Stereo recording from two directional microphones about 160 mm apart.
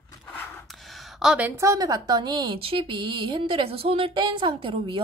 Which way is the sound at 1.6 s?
20° right (ahead or behind).